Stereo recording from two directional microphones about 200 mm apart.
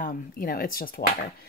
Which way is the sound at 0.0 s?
45° left (ahead or behind).